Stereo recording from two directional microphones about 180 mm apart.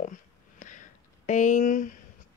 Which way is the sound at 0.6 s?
45° left (ahead or behind).